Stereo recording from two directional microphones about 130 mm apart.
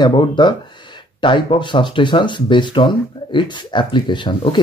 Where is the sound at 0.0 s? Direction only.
35° left (ahead or behind).